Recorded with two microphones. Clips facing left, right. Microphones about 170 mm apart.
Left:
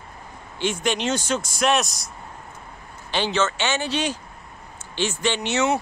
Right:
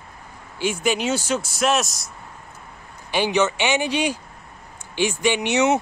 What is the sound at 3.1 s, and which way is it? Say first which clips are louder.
Speech: right 3 dB; 15° right (ahead or behind).